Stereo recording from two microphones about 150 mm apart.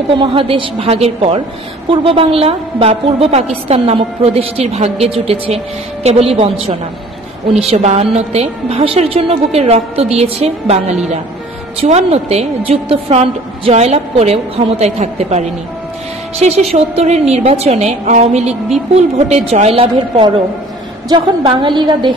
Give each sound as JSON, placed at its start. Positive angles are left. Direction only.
{"t": 0.1, "sound": "a woman's voice", "side_deg": -35}
{"t": 7.7, "sound": "a woman's voice", "side_deg": -50}